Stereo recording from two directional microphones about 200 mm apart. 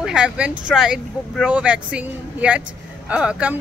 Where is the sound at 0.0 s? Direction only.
5° right (ahead or behind).